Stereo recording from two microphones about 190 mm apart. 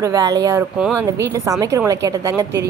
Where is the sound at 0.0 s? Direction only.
20° right (ahead or behind).